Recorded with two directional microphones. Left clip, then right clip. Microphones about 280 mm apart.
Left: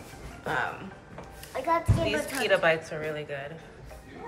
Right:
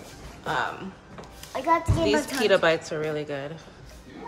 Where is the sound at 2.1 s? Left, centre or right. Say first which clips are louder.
Right 5 dB; centre.